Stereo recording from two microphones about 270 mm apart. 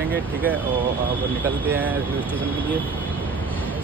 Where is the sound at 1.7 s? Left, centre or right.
Centre.